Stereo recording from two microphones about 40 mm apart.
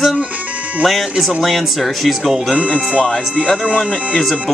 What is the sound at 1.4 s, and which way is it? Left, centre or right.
Speech, centre.